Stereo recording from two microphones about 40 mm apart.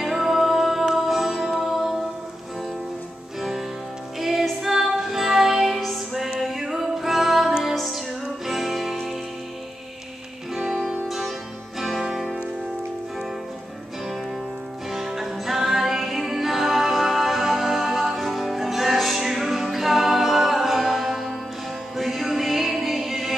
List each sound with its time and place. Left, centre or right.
0.0 s music: centre
3.3 s music: centre
11.1 s music: centre
14.9 s music: centre